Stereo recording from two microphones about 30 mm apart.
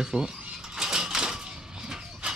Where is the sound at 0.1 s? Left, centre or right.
Right.